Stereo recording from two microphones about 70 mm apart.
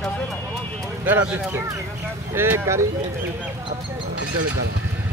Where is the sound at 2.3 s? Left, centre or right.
Right.